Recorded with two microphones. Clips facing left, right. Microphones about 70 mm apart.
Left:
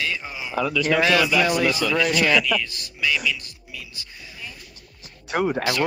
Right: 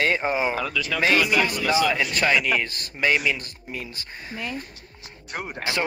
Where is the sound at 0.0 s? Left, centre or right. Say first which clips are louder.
Right 7 dB; right.